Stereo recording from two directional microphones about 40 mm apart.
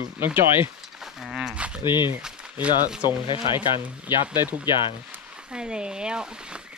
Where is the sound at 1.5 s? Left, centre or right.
Right.